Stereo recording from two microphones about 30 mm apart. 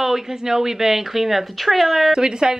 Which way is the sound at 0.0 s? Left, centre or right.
Centre.